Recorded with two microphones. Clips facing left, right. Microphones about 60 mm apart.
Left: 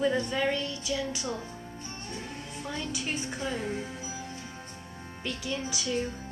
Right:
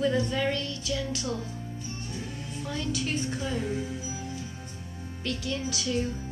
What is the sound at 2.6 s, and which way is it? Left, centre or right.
A woman's voice, centre.